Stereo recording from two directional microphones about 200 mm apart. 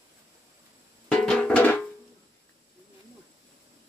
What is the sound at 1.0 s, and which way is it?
Music, 5° left (ahead or behind).